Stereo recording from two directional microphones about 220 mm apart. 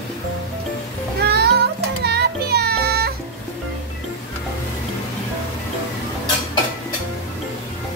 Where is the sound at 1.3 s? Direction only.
45° right (ahead or behind).